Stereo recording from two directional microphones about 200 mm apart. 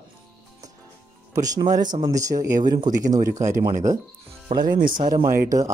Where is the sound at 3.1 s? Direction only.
40° right (ahead or behind).